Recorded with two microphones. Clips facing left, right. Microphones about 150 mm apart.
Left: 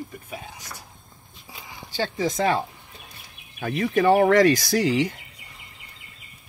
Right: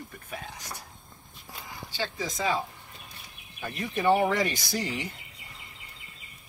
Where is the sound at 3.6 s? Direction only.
90° left.